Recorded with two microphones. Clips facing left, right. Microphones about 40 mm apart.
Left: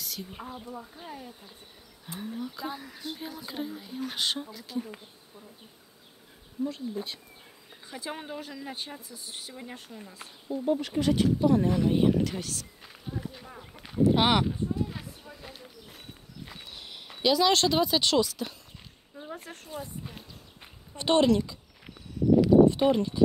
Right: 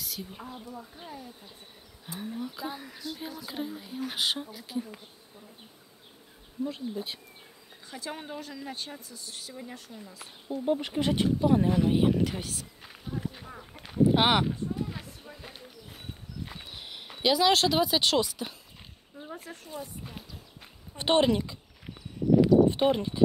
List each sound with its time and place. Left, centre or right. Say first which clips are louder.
0.0 s a sound: even; centre
1.0 s speech: left 1 dB; left
2.1 s speech: even; centre
6.6 s speech: left 1 dB; centre
7.9 s speech: left 1 dB; centre
9.8 s speech: left 1 dB; left
10.5 s a woman's voice: left 1 dB; centre
12.8 s insect: right 3 dB; centre
13.7 s a sound: even; centre
19.3 s speech: even; left
20.0 s speech: even; centre
20.9 s a woman's voice: left 1 dB; centre
22.4 s a sound: left 2 dB; centre